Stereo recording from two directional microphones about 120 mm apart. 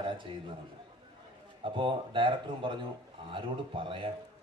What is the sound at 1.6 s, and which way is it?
A man's voice, 45° right (ahead or behind).